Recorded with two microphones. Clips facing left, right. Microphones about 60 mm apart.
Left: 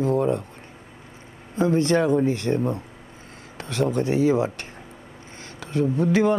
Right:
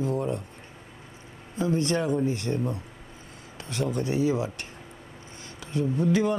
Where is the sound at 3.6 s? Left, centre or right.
Left.